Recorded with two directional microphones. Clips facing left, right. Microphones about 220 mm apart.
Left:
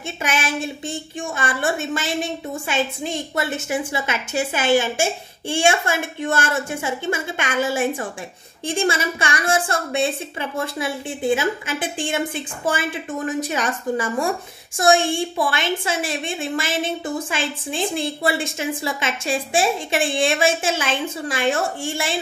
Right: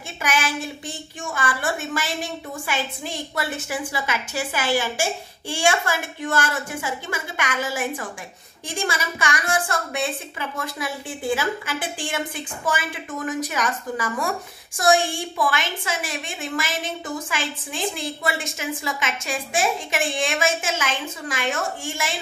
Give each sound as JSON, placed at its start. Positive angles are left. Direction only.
{"t": 0.2, "sound": "a woman's voice", "side_deg": 25}